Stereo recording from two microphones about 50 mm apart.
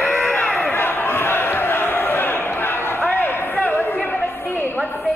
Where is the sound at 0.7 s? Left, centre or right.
Left.